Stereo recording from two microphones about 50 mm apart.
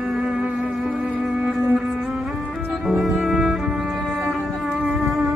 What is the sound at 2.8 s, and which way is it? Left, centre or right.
Music, centre.